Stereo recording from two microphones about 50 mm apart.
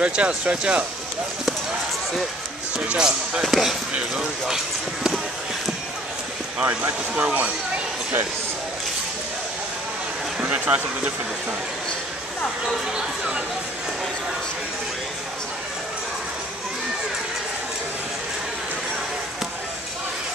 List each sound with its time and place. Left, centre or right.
0.0 s speech: right
3.0 s speech: centre
3.4 s speech: centre
6.6 s speech: right
10.4 s speech: right
12.9 s speech: centre